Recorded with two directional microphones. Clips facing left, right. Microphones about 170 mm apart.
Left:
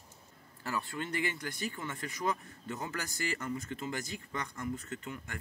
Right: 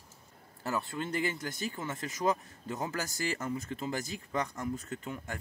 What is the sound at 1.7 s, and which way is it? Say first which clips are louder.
Speech: right 3 dB; 35° right (ahead or behind).